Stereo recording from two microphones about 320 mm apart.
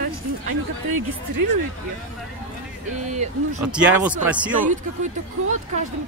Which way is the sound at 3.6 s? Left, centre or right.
Centre.